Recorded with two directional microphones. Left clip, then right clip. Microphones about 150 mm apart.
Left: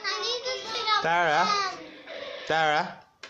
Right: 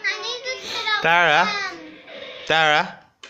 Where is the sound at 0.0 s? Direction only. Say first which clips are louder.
Right 4 dB; 15° left (ahead or behind).